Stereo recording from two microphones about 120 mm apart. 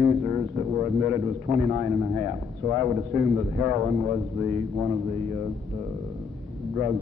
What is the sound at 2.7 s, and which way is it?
A man's voice, 20° right (ahead or behind).